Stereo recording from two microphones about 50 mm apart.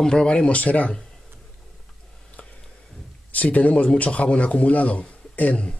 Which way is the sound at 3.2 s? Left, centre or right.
Left.